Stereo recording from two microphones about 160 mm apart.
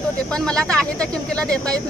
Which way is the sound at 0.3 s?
5° left (ahead or behind).